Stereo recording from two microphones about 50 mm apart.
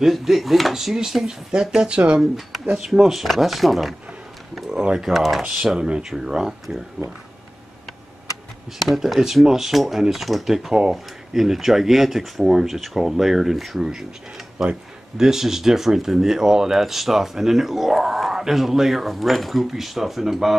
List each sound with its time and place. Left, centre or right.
0.0 s speech: centre; by 2.2 s right
2.9 s speech: centre
4.6 s speech: centre
5.1 s speech: centre
5.4 s speech: centre
8.7 s speech: centre